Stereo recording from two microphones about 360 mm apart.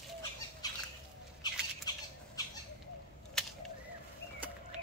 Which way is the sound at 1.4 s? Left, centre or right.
Centre.